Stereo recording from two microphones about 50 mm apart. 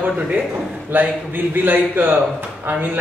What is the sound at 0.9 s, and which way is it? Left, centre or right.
A man's voice, right.